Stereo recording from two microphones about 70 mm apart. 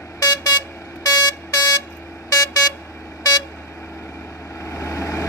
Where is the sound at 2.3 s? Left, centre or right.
Left.